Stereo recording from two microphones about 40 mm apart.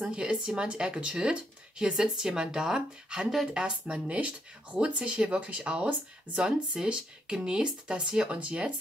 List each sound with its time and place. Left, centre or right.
0.0 s speech: right
8.4 s speech: right